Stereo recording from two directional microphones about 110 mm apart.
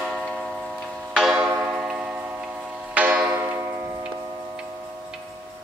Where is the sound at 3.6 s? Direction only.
30° right (ahead or behind).